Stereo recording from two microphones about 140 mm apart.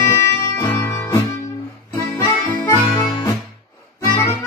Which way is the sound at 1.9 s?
20° left (ahead or behind).